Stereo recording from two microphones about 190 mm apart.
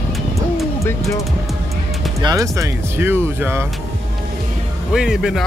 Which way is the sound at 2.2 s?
15° right (ahead or behind).